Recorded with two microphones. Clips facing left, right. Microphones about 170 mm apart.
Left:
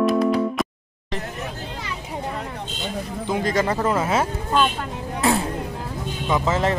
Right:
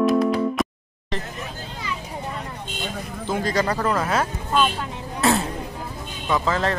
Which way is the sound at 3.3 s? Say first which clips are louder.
Left 1 dB; 20° left (ahead or behind).